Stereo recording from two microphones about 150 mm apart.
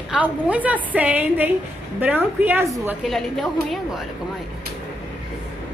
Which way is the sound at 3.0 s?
Centre (ahead or behind).